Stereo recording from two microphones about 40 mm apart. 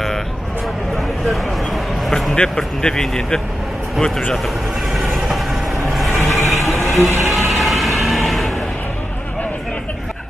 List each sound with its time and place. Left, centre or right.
2.0 s music: centre
2.3 s speech: centre
4.9 s vehicle: centre